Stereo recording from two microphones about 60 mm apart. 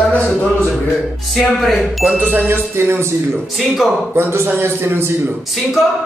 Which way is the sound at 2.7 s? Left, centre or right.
Right.